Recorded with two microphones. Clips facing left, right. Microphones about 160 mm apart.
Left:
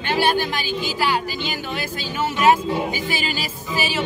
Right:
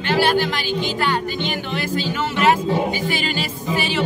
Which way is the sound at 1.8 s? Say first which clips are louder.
Right 4 dB; 10° left (ahead or behind).